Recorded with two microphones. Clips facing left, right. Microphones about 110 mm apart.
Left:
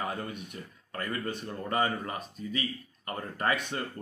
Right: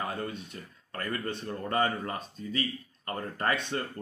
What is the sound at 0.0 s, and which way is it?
A man's voice, 20° left (ahead or behind).